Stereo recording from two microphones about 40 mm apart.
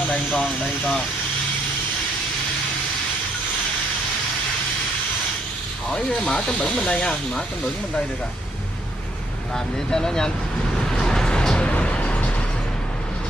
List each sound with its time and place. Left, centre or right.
0.4 s speech: left
6.3 s speech: left
9.8 s speech: centre
10.9 s a sound: centre; by 12.3 s left